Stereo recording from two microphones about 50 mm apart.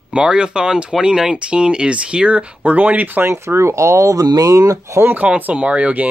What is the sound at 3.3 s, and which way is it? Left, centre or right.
Speech, right.